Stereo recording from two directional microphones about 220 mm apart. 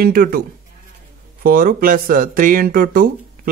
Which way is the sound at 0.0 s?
40° right (ahead or behind).